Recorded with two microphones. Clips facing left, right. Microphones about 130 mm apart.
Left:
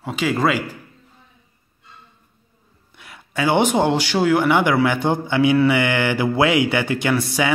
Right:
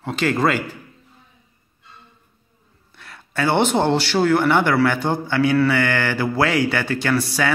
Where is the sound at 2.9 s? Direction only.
15° left (ahead or behind).